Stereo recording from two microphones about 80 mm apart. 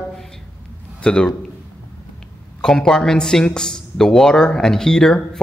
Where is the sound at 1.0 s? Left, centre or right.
Centre.